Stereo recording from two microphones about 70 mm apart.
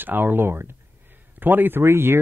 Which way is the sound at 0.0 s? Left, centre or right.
Right.